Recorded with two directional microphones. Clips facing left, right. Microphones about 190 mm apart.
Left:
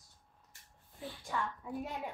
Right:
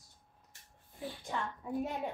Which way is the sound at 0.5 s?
20° right (ahead or behind).